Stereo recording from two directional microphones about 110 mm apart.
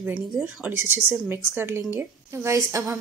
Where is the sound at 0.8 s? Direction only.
20° right (ahead or behind).